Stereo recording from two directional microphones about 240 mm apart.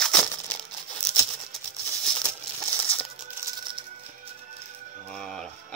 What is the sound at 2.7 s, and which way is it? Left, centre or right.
Music, centre.